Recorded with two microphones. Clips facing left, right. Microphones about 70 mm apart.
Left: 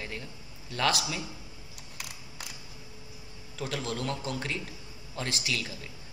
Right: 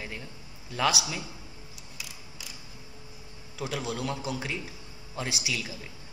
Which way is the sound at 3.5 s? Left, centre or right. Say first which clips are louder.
Right 1 dB; centre.